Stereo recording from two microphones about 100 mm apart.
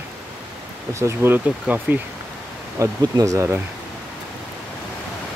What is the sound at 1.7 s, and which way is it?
Speech, 15° right (ahead or behind).